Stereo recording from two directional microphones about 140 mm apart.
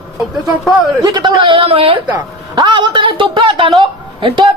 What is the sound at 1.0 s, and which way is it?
A man's voice, 35° right (ahead or behind).